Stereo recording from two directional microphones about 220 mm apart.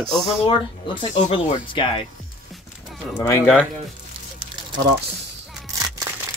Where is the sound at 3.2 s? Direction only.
10° left (ahead or behind).